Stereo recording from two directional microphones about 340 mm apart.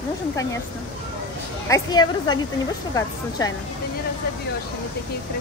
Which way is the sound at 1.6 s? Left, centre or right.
Centre.